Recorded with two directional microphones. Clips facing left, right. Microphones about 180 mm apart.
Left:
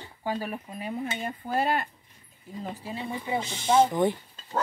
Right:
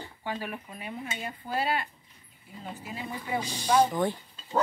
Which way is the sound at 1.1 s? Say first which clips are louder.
Left 1 dB; 50° left (ahead or behind).